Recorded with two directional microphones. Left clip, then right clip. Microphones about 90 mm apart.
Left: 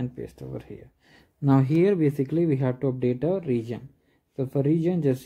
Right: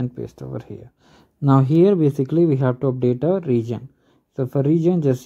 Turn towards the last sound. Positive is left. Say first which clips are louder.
# right 6 dB
turn(degrees=-30)  # may be behind; listen again after turning